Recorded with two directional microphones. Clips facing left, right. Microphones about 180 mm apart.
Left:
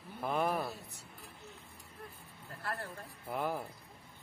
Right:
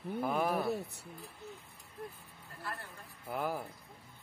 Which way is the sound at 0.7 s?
60° right (ahead or behind).